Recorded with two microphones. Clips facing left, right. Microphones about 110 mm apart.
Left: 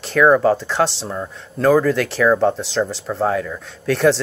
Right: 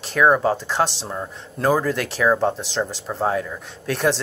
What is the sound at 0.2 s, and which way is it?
Speech, 20° right (ahead or behind).